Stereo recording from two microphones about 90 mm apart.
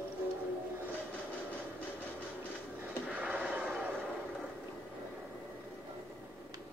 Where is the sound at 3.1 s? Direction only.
15° right (ahead or behind).